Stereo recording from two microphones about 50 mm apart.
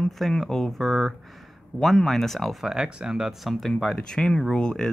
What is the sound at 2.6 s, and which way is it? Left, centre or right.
Speech, centre.